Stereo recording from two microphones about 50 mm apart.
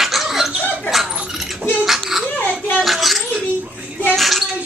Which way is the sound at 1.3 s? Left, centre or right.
Centre.